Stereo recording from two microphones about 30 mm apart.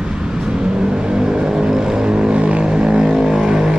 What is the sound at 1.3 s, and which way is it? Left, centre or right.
Vehicle, right.